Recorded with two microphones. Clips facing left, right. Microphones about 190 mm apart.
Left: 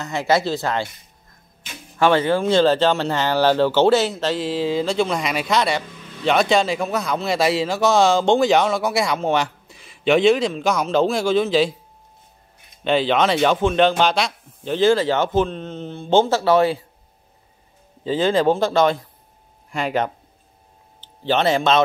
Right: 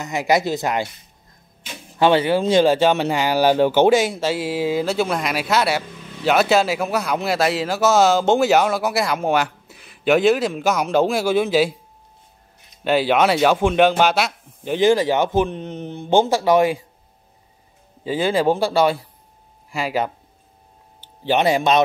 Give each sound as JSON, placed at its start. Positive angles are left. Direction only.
{"t": 0.0, "sound": "speech", "side_deg": -15}
{"t": 2.0, "sound": "speech", "side_deg": -15}
{"t": 12.8, "sound": "speech", "side_deg": -5}
{"t": 18.0, "sound": "speech", "side_deg": -10}
{"t": 21.3, "sound": "speech", "side_deg": -15}